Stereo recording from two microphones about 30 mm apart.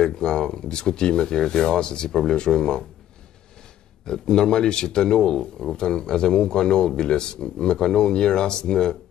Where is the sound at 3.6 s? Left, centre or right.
Centre.